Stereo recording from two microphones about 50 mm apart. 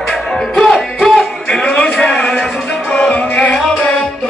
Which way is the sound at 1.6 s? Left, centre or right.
Centre.